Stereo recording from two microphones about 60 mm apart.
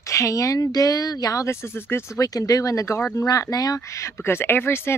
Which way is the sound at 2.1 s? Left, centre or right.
Left.